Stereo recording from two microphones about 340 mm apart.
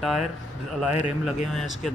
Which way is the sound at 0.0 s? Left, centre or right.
Centre.